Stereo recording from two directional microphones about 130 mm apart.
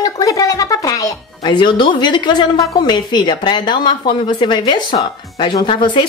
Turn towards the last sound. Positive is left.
turn(degrees=35)  # may be behind; listen again after turning